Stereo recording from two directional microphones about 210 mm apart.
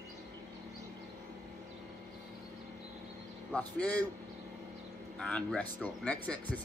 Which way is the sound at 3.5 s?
5° left (ahead or behind).